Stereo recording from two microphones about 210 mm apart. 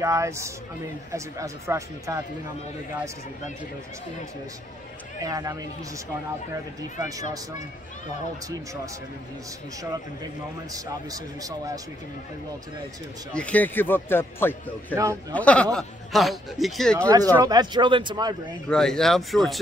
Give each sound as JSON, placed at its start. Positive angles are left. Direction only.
{"t": 0.0, "sound": "speech", "side_deg": -15}
{"t": 5.2, "sound": "speech", "side_deg": -15}
{"t": 7.0, "sound": "speech", "side_deg": -15}
{"t": 10.7, "sound": "speech", "side_deg": -15}
{"t": 13.3, "sound": "a man's voice", "side_deg": 5}
{"t": 17.1, "sound": "speech", "side_deg": -15}
{"t": 18.7, "sound": "a man's voice", "side_deg": 5}